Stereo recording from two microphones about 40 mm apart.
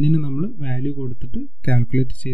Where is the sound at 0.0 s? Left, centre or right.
Left.